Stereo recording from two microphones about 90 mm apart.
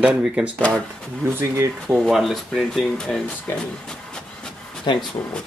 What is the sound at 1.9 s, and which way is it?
Speech, 5° left (ahead or behind).